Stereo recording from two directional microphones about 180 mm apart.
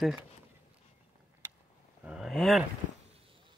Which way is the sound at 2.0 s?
5° right (ahead or behind).